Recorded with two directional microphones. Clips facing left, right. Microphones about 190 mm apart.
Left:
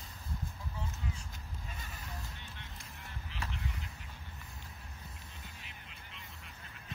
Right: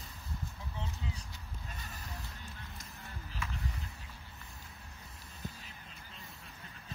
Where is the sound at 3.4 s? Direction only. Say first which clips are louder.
Even; 40° left (ahead or behind).